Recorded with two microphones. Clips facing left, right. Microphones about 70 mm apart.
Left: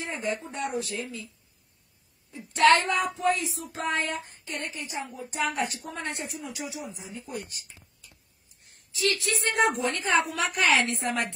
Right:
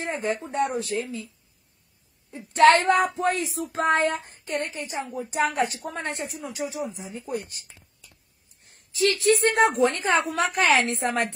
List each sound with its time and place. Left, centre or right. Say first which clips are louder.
0.0 s a woman's voice: right 4 dB; right
2.3 s a woman's voice: right 4 dB; right
8.6 s a woman's voice: right 4 dB; right